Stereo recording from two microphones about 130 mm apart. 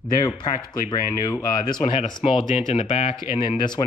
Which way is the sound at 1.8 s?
45° left (ahead or behind).